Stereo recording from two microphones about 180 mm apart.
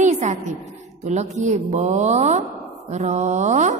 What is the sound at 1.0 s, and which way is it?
A woman's voice, 40° right (ahead or behind).